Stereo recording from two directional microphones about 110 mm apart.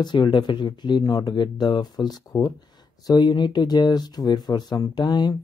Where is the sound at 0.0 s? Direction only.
45° left (ahead or behind).